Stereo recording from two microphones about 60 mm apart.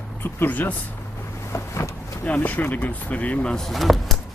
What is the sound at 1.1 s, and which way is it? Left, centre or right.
Boat, left.